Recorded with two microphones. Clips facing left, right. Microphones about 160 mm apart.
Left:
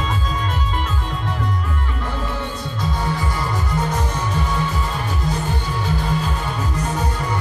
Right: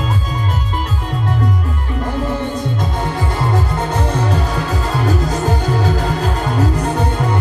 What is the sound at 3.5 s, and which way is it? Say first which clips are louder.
Music: right 4 dB; 60° right (ahead or behind).